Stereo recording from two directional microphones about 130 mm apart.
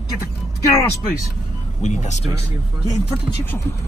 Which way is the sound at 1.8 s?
65° left (ahead or behind).